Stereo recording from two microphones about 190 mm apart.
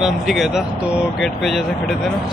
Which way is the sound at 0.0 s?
Centre (ahead or behind).